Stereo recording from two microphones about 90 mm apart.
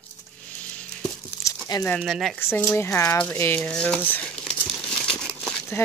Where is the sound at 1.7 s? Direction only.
45° left (ahead or behind).